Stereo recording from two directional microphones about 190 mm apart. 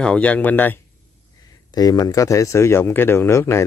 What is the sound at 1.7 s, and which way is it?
Speech, 20° left (ahead or behind).